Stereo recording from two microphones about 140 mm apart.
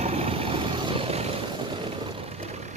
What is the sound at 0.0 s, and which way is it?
Vehicle, 45° right (ahead or behind).